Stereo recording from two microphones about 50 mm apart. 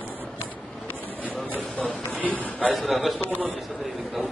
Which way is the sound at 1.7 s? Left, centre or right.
Left.